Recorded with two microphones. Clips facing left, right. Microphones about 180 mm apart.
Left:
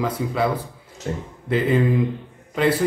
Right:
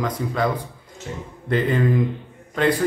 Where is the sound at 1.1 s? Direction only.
50° left (ahead or behind).